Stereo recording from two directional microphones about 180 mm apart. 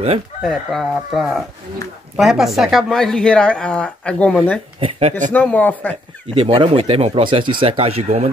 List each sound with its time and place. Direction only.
0.4 s speech: centre (ahead or behind)
4.7 s speech: 35° right (ahead or behind)
5.3 s speech: 10° left (ahead or behind)
6.3 s speech: 30° right (ahead or behind)